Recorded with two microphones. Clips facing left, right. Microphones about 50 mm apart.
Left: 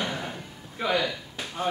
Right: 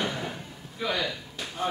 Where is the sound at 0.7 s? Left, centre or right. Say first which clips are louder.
Left 4 dB; left.